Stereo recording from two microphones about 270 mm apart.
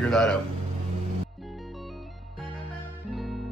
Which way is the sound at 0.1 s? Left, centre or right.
Centre.